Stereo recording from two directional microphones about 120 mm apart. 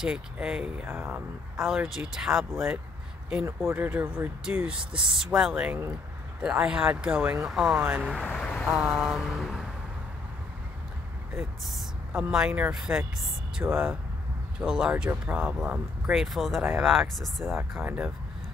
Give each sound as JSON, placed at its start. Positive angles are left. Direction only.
{"t": 0.0, "sound": "speech", "side_deg": -5}
{"t": 1.6, "sound": "speech", "side_deg": -5}
{"t": 4.9, "sound": "speech", "side_deg": -45}
{"t": 5.2, "sound": "speech", "side_deg": -5}
{"t": 8.2, "sound": "vehicle", "side_deg": 5}
{"t": 8.6, "sound": "a sound", "side_deg": -5}
{"t": 11.3, "sound": "speech", "side_deg": -5}
{"t": 14.6, "sound": "speech", "side_deg": -5}
{"t": 17.6, "sound": "speech", "side_deg": -15}